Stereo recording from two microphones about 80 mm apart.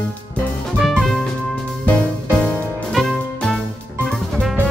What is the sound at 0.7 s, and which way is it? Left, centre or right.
Music, centre.